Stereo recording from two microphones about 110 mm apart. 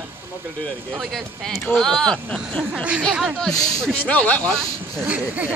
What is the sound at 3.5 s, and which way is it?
Speech, 35° left (ahead or behind).